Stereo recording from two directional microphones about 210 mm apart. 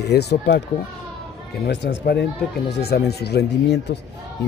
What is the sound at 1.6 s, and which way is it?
Speech, 55° left (ahead or behind).